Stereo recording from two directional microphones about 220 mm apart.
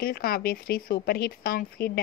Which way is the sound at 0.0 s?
45° left (ahead or behind).